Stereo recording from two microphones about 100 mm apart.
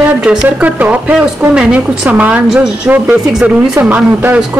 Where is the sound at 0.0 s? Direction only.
10° right (ahead or behind).